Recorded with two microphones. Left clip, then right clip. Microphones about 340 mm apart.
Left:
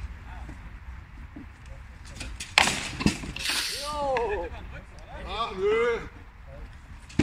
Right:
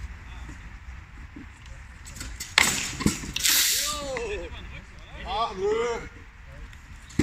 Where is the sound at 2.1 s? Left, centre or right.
Centre.